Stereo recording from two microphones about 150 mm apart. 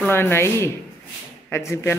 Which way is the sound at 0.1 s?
15° left (ahead or behind).